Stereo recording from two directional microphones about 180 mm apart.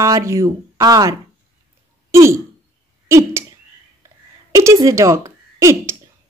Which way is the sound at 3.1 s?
15° right (ahead or behind).